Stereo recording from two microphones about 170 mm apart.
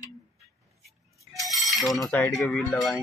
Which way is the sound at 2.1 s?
5° left (ahead or behind).